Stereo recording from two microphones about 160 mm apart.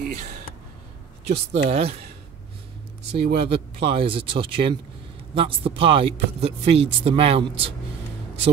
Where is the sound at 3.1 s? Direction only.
80° right.